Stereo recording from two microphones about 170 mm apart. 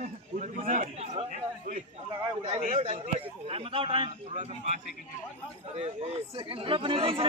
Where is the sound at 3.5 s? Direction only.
35° right (ahead or behind).